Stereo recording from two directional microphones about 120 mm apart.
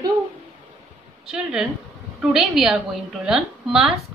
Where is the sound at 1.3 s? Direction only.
5° right (ahead or behind).